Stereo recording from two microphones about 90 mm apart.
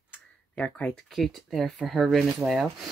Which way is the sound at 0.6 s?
15° left (ahead or behind).